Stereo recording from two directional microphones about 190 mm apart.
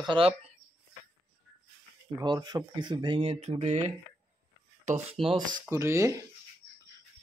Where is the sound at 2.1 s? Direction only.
20° right (ahead or behind).